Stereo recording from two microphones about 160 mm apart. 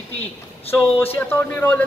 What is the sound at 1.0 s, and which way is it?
Speech, 15° left (ahead or behind).